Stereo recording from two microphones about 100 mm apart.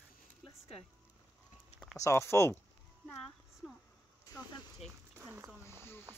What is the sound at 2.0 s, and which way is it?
Speech, 30° left (ahead or behind).